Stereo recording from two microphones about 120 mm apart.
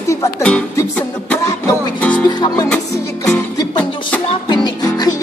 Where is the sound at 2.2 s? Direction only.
30° left (ahead or behind).